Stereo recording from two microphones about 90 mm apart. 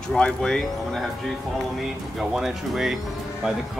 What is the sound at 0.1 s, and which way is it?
Speech, 10° left (ahead or behind).